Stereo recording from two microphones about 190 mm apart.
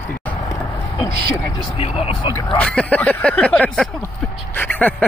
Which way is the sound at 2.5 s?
5° left (ahead or behind).